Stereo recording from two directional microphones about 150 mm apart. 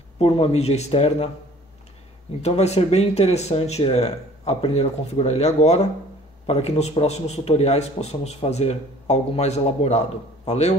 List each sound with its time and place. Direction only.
0.2 s a man's voice: 40° left (ahead or behind)
2.4 s a man's voice: 45° left (ahead or behind)